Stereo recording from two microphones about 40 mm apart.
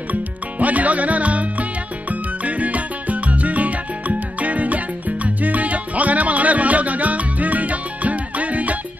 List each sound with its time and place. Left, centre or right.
0.1 s music: right